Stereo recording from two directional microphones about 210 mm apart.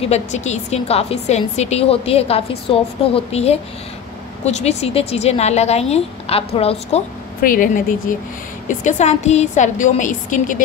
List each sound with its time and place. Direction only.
0.0 s speech: 30° left (ahead or behind)
7.4 s a woman's voice: 40° left (ahead or behind)